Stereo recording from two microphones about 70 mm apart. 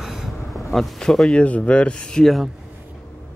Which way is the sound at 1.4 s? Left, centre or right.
Centre.